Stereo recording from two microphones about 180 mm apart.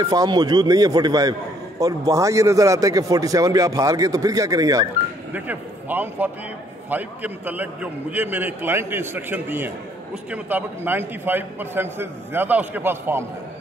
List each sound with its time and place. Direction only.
0.0 s a man's voice: 20° right (ahead or behind)
5.3 s a man's voice: 10° right (ahead or behind)